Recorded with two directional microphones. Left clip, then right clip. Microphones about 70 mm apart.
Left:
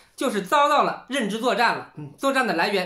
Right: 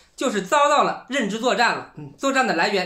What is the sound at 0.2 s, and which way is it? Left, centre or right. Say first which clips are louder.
A woman's voice: right 1 dB; left.